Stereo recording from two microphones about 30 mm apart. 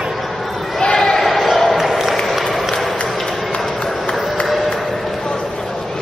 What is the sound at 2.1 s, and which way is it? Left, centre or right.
Applause, centre.